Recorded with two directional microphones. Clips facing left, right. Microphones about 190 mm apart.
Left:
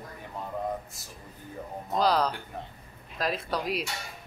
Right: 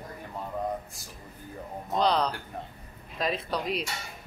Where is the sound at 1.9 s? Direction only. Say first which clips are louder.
Even; 5° left (ahead or behind).